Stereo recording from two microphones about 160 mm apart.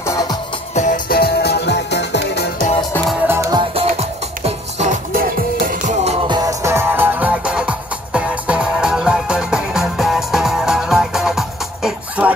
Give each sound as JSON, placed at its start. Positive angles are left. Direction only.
{"t": 0.0, "sound": "music", "side_deg": 20}
{"t": 0.7, "sound": "music", "side_deg": 55}
{"t": 3.3, "sound": "music", "side_deg": -20}
{"t": 4.5, "sound": "music", "side_deg": -45}
{"t": 5.1, "sound": "music", "side_deg": -60}
{"t": 6.2, "sound": "music", "side_deg": -25}